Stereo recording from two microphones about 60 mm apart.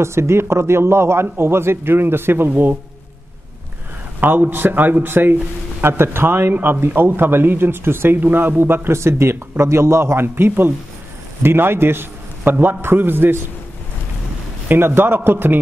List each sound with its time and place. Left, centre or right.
0.0 s a man's voice: right
4.2 s speech: right
14.7 s speech: right